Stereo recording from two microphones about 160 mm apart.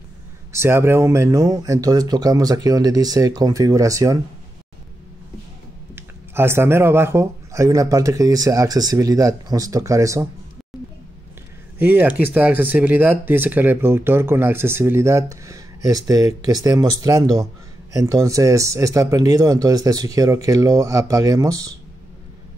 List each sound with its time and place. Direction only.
0.5 s speech: 15° right (ahead or behind)
5.9 s speech: 15° right (ahead or behind)
11.8 s speech: 10° right (ahead or behind)